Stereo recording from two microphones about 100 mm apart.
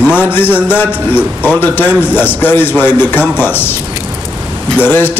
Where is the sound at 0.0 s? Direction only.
20° left (ahead or behind).